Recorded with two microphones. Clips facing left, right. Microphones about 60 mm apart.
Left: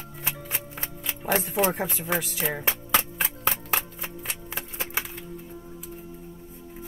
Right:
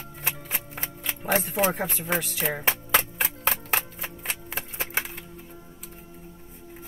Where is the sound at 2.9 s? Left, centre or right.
Centre.